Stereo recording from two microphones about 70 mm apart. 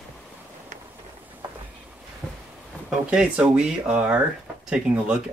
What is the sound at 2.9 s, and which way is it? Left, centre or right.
Speech, centre.